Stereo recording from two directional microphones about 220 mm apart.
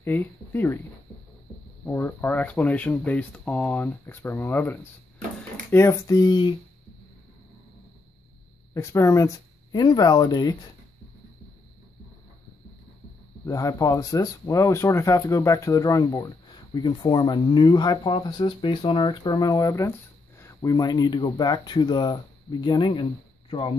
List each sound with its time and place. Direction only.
0.0 s speech: 10° left (ahead or behind)
1.9 s speech: 10° left (ahead or behind)
8.7 s speech: 10° left (ahead or behind)
13.5 s speech: 15° left (ahead or behind)